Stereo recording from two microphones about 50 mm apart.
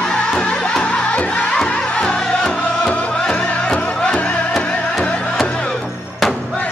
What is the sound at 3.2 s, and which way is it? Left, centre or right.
Music, centre.